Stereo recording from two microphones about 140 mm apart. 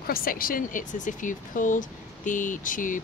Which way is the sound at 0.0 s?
90° left.